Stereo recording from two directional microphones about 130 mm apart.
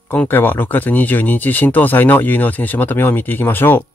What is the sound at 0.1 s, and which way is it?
Speech, 15° left (ahead or behind).